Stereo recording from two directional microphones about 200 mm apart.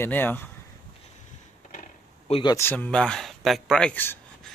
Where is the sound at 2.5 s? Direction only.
10° left (ahead or behind).